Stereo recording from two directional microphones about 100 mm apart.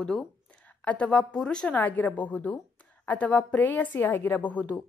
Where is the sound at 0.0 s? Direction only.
5° left (ahead or behind).